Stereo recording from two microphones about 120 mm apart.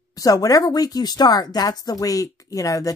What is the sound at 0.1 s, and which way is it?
Speech, 30° left (ahead or behind).